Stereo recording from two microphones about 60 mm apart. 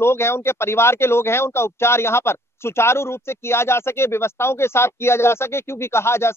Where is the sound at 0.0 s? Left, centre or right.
Left.